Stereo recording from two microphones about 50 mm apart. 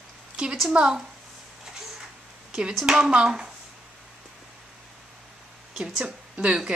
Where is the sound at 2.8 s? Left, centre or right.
Centre.